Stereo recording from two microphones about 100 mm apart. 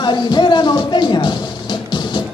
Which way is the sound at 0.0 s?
50° left (ahead or behind).